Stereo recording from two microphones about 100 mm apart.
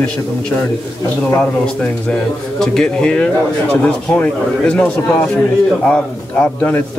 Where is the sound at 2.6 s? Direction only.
5° left (ahead or behind).